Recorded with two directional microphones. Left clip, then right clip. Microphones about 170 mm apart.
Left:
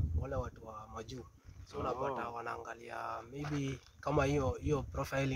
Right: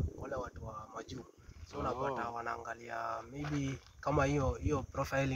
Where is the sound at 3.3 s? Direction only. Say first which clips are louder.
Right 1 dB; 5° left (ahead or behind).